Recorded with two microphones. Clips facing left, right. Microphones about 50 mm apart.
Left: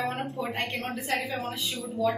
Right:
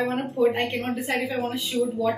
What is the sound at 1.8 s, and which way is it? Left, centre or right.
Speech, centre.